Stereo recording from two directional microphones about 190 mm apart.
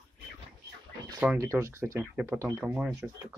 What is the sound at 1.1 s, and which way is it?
Speech, 15° right (ahead or behind).